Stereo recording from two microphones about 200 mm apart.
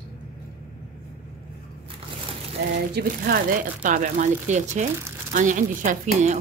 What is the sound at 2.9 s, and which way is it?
A woman's voice, 50° right (ahead or behind).